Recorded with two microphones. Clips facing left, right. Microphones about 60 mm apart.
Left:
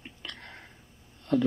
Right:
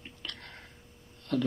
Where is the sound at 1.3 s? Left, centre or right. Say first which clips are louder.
Left 4 dB; centre.